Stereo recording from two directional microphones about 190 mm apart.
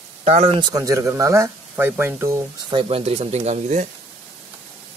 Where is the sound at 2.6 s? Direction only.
25° right (ahead or behind).